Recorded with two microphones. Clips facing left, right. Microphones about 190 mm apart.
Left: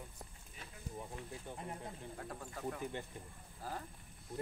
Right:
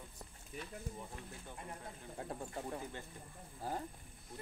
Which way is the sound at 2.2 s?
25° right (ahead or behind).